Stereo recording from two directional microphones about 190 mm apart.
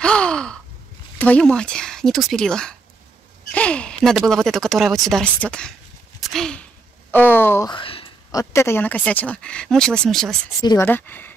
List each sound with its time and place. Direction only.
0.0 s sigh: 5° left (ahead or behind)
1.1 s speech: 5° left (ahead or behind)
7.7 s speech: 30° left (ahead or behind); by 10.3 s centre (ahead or behind)
10.6 s speech: 20° left (ahead or behind)
10.9 s speech: 10° left (ahead or behind)